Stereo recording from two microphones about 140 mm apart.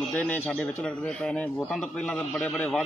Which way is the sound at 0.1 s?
10° left (ahead or behind).